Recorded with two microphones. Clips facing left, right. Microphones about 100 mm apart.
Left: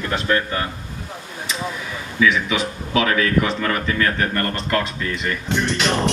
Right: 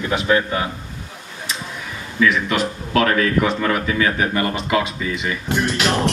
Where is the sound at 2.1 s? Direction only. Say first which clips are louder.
Right 1 dB; centre (ahead or behind).